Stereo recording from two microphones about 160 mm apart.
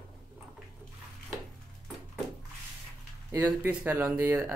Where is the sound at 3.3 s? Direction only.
15° right (ahead or behind).